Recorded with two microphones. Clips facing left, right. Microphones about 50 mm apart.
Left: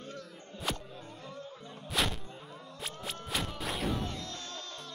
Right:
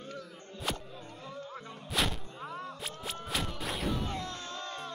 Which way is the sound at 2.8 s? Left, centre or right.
Centre.